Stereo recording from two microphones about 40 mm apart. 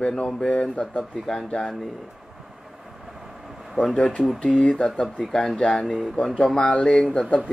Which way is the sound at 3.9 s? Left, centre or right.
Left.